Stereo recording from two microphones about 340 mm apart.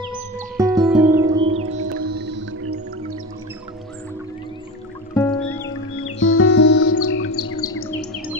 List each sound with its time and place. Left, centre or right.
0.6 s music: centre
2.0 s music: right
5.1 s music: centre
5.9 s music: left
7.5 s bird: left